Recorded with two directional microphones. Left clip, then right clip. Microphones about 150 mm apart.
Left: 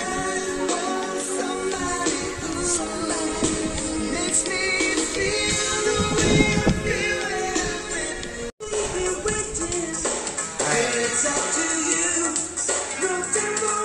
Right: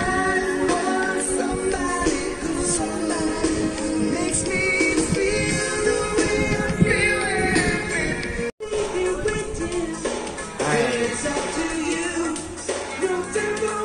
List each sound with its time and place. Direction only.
0.0 s music: 35° left (ahead or behind)
4.1 s music: 25° left (ahead or behind)
8.7 s music: 25° left (ahead or behind)
10.9 s music: 25° left (ahead or behind)